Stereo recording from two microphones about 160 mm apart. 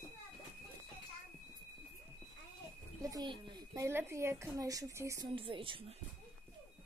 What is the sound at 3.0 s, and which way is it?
Speech, 25° right (ahead or behind).